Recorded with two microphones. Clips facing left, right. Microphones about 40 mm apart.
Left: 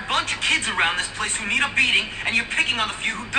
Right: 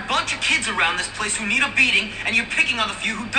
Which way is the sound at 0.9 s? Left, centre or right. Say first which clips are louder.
Right 1 dB; left.